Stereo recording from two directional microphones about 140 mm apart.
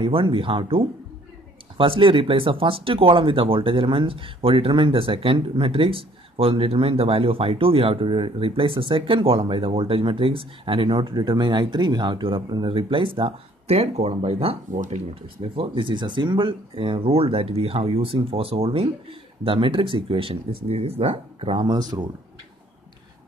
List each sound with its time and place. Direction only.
0.0 s speech: 40° right (ahead or behind)
14.7 s speech: 65° right (ahead or behind)
15.5 s speech: 35° right (ahead or behind)